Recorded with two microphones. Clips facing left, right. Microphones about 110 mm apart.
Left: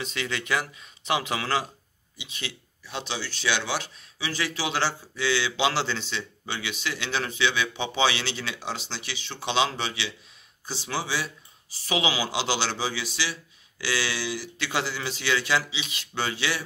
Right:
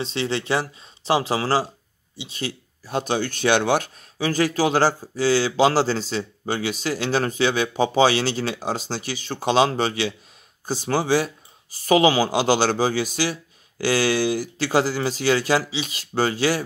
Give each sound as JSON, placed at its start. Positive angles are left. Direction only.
{"t": 0.0, "sound": "speech", "side_deg": -30}